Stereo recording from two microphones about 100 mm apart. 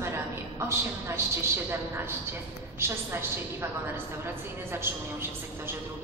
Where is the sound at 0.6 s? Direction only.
25° right (ahead or behind).